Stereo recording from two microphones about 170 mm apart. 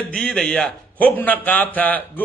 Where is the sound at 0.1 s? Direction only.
5° left (ahead or behind).